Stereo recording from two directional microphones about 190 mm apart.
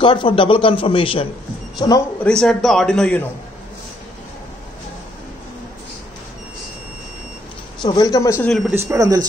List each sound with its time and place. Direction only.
0.0 s a man's voice: 25° left (ahead or behind)
2.2 s a man's voice: 5° left (ahead or behind)
7.8 s speech: 20° left (ahead or behind)
8.5 s a man's voice: centre (ahead or behind)
8.7 s speech: 15° right (ahead or behind)